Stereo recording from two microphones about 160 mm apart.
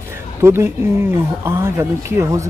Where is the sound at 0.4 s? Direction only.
15° right (ahead or behind).